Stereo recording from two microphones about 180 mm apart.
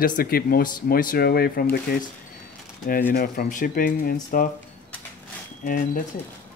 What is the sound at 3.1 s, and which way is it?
Speech, 50° left (ahead or behind).